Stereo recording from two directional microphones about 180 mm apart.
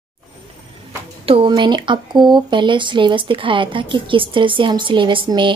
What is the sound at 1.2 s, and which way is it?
Speech, 30° right (ahead or behind).